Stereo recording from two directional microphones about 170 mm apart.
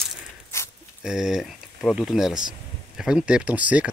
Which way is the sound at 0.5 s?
15° left (ahead or behind).